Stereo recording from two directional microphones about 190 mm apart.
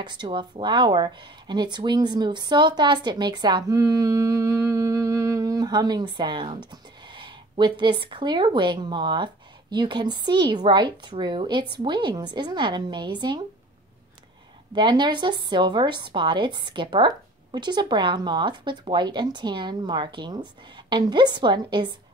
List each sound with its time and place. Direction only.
0.0 s speech: 25° right (ahead or behind)
14.7 s speech: 25° right (ahead or behind)